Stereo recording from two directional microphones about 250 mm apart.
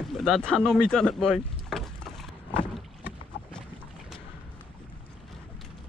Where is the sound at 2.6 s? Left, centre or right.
Centre.